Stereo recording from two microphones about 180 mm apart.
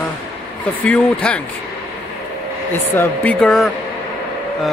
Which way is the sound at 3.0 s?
5° left (ahead or behind).